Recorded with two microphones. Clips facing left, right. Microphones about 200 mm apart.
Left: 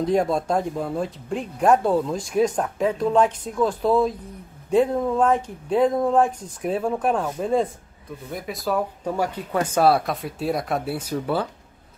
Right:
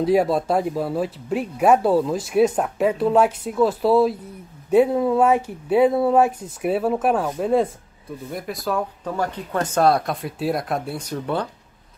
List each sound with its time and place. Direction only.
0.0 s speech: 5° right (ahead or behind)
9.0 s speech: 10° left (ahead or behind)